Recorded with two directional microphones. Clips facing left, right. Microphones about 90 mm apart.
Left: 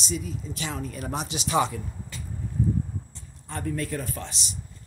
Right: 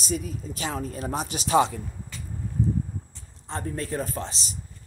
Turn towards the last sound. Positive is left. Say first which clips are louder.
# right 3 dB
turn(degrees=-35)  # may be behind; listen again after turning